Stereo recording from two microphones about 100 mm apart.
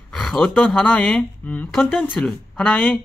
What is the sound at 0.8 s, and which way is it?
A woman's voice, 15° left (ahead or behind).